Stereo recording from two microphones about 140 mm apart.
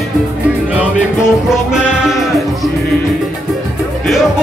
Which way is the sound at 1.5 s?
5° right (ahead or behind).